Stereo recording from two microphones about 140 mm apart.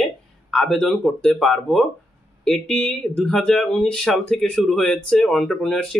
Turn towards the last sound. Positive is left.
turn(degrees=5)  # may be behind; listen again after turning